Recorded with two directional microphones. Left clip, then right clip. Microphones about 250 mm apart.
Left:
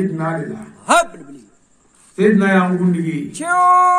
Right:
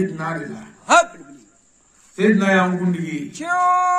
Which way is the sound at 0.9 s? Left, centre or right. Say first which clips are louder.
Even; left.